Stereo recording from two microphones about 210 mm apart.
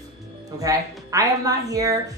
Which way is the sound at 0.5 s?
15° right (ahead or behind).